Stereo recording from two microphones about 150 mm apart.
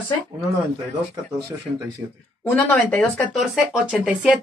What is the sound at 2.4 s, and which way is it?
Speech, 10° left (ahead or behind).